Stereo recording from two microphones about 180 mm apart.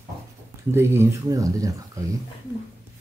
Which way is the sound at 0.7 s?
15° right (ahead or behind).